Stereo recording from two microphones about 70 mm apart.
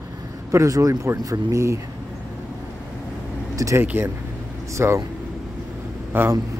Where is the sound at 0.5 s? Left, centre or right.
Right.